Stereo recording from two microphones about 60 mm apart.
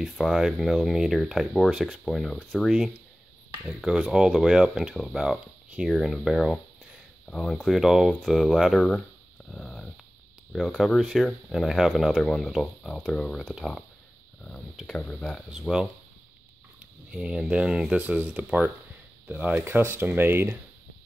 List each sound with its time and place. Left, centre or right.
0.2 s speech: centre
2.0 s speech: centre
3.6 s speech: centre
4.9 s speech: centre
8.8 s a sound: centre
10.5 s speech: centre
15.0 s speech: left
17.1 s speech: centre
18.0 s speech: right
19.6 s speech: right